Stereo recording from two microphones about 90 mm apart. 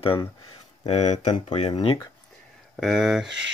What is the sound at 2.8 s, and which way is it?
Speech, 5° right (ahead or behind).